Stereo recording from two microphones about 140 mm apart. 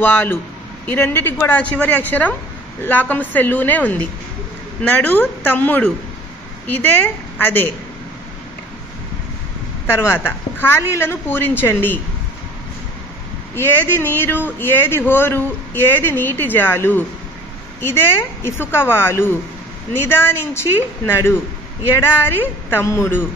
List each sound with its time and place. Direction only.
0.0 s speech: 15° left (ahead or behind)
9.8 s speech: 15° left (ahead or behind)
13.6 s speech: 15° left (ahead or behind)